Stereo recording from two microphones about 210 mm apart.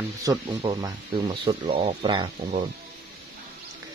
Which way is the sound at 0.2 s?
15° right (ahead or behind).